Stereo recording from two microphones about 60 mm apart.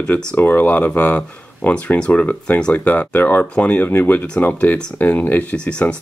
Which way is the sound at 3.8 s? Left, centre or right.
Left.